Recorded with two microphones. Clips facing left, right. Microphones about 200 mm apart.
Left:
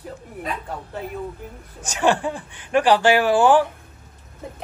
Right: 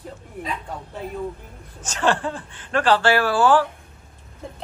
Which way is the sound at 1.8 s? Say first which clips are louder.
Left 2 dB; 10° left (ahead or behind).